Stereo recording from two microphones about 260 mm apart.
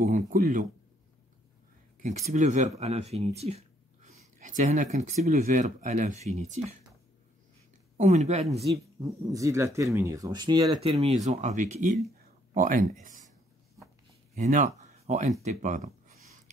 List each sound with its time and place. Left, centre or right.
0.3 s speech: right
2.0 s speech: right
8.0 s speech: right
14.3 s speech: right